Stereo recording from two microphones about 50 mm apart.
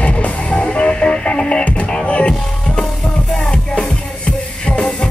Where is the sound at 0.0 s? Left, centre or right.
Left.